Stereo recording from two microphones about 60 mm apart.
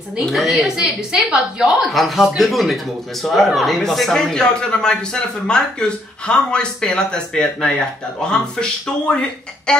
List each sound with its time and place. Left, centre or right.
0.3 s a woman's voice: centre